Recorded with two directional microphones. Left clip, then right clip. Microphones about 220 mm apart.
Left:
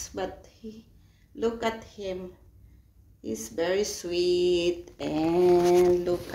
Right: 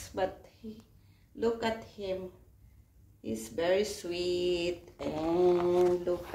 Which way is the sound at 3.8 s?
35° left (ahead or behind).